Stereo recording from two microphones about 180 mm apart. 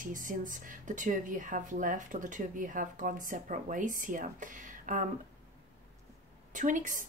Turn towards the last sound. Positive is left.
turn(degrees=-45)  # may be behind; listen again after turning